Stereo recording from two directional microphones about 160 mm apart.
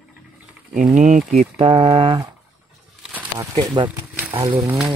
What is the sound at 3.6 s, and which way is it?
Speech, 25° right (ahead or behind).